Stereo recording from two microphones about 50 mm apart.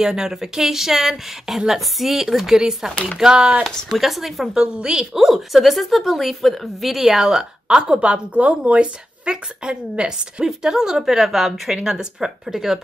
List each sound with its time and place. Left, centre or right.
0.0 s a woman's voice: centre
3.6 s speech: centre
4.7 s a woman's voice: centre
5.2 s a woman's voice: centre